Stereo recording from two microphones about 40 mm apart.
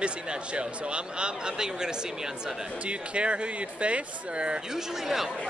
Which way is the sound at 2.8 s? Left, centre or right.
Right.